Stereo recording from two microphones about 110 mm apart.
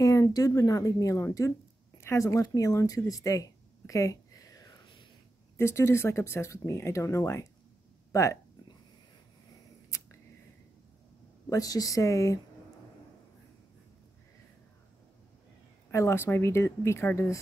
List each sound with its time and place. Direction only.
0.0 s speech: 30° left (ahead or behind)
11.4 s speech: 30° left (ahead or behind)
15.9 s speech: 25° left (ahead or behind)